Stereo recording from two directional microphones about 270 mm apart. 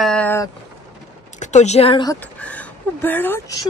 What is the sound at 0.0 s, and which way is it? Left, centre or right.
Vehicle, centre.